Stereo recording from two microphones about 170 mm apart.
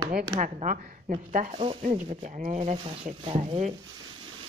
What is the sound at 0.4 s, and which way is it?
A woman's voice, 50° right (ahead or behind).